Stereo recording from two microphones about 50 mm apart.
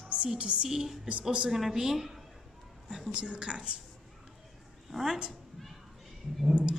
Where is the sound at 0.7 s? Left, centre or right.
Centre.